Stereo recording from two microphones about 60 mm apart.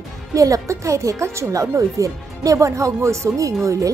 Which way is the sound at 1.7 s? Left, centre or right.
Right.